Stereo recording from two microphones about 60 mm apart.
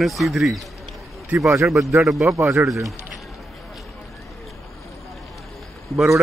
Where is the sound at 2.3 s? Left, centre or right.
Right.